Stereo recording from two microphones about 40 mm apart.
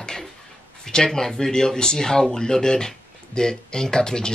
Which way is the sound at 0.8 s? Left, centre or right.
Centre.